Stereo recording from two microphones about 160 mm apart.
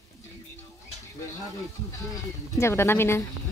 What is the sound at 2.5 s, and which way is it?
Speech, 15° left (ahead or behind).